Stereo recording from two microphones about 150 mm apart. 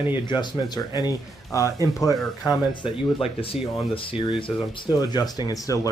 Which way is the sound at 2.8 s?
40° left (ahead or behind).